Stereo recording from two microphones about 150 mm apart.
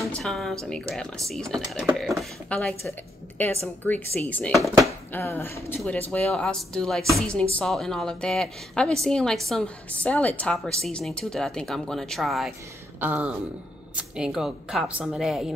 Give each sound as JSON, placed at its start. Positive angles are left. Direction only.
{"t": 0.1, "sound": "a woman's voice", "side_deg": 5}
{"t": 5.1, "sound": "a woman's voice", "side_deg": 15}